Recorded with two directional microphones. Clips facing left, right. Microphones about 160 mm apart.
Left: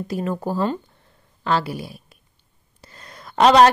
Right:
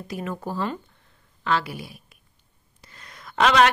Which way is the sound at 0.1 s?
35° left (ahead or behind).